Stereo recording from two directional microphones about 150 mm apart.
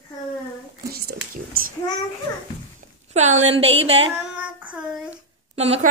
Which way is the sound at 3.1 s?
50° right (ahead or behind).